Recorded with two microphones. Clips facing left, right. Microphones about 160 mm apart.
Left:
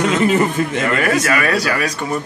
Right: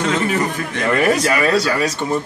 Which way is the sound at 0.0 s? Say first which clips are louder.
Left 4 dB; 20° left (ahead or behind).